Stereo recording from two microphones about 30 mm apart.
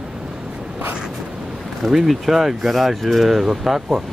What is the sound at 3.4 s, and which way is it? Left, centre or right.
Speech, centre.